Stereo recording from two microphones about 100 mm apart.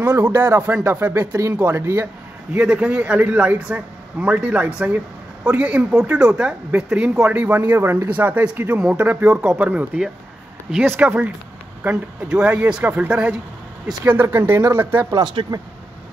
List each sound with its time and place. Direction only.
0.0 s speech: 20° right (ahead or behind)
2.5 s speech: 10° right (ahead or behind)
15.4 s speech: 65° right (ahead or behind)